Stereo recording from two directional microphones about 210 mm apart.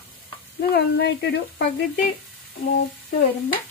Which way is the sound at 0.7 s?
50° left (ahead or behind).